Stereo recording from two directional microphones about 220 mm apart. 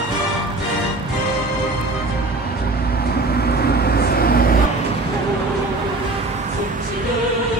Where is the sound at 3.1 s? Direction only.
45° left (ahead or behind).